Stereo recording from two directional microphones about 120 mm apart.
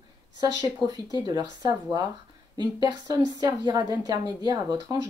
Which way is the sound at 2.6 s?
35° right (ahead or behind).